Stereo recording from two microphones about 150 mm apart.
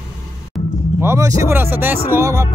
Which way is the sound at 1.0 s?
20° right (ahead or behind).